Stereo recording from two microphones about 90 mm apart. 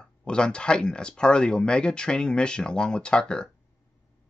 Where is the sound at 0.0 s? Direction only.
10° left (ahead or behind).